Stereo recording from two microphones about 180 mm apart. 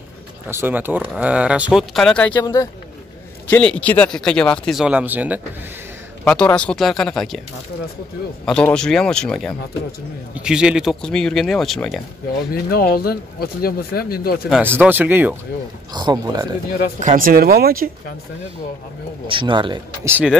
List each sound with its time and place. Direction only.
0.5 s speech: 10° right (ahead or behind); by 2.4 s 5° left (ahead or behind)
2.4 s speech: 20° left (ahead or behind)
3.4 s speech: 10° left (ahead or behind); by 5.4 s 10° right (ahead or behind)
6.2 s speech: 5° left (ahead or behind)
8.5 s speech: 5° left (ahead or behind)
12.6 s speech: 55° left (ahead or behind)
14.5 s speech: 10° right (ahead or behind)
15.9 s speech: 25° right (ahead or behind)
17.0 s speech: 50° right (ahead or behind)
19.2 s speech: 30° right (ahead or behind)
20.1 s speech: 10° right (ahead or behind)